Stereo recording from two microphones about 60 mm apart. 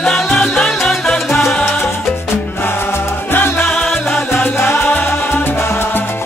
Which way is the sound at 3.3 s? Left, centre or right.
Left.